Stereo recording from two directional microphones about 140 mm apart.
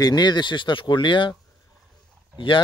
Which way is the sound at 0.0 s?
30° left (ahead or behind).